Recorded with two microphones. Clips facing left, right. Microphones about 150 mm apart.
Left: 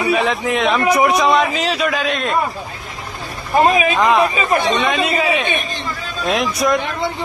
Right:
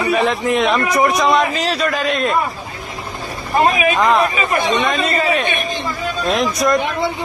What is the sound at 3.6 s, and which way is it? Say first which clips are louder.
Speech: left 1 dB; 30° left (ahead or behind).